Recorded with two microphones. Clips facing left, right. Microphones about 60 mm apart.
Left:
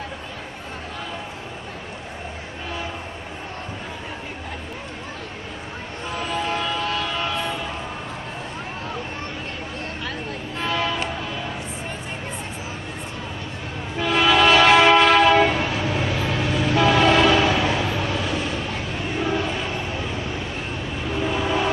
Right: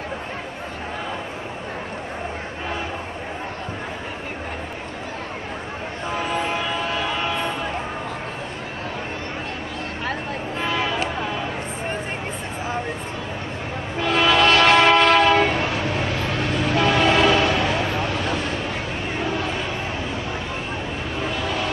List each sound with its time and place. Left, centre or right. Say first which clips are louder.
6.1 s train: right 1 dB; centre
10.6 s train: even; centre
13.9 s train: even; centre
19.1 s vehicle: left 2 dB; centre
21.3 s train: left 4 dB; centre